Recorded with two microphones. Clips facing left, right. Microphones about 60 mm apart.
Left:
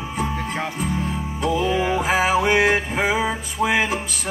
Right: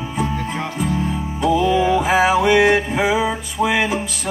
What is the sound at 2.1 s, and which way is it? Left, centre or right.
Music, centre.